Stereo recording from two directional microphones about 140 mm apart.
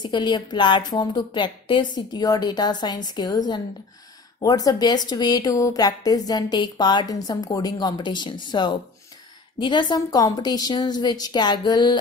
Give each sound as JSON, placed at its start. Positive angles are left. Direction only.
{"t": 0.0, "sound": "a woman's voice", "side_deg": 30}